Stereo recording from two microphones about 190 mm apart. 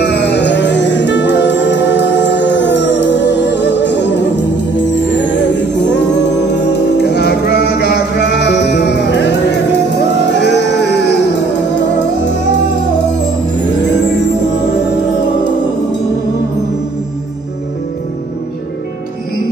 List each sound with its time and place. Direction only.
0.0 s music: 65° left (ahead or behind)
5.4 s music: 65° left (ahead or behind)